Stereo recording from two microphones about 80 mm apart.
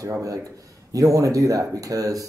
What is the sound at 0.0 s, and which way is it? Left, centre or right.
Speech, right.